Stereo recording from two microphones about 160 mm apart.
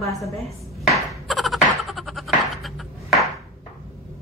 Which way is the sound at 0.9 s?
Centre (ahead or behind).